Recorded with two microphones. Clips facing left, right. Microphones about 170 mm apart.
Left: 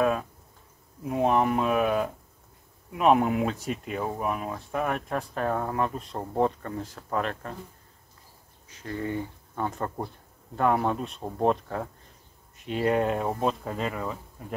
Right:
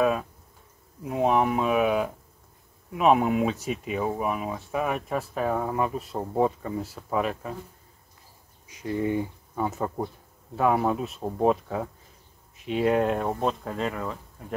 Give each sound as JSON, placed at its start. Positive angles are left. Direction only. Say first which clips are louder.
{"t": 0.0, "sound": "speech", "louder": "right 1 dB", "side_deg": 0}
{"t": 8.6, "sound": "speech", "louder": "right 5 dB", "side_deg": -15}